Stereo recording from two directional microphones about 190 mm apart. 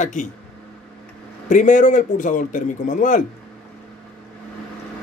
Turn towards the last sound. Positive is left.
turn(degrees=45)  # may be behind; listen again after turning